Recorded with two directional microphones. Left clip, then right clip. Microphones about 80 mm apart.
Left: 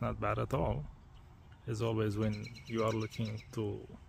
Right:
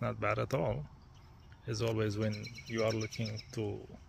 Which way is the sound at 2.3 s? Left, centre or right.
Left.